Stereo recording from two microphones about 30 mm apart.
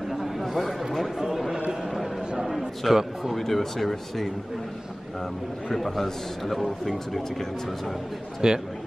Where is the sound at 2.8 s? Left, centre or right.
Centre.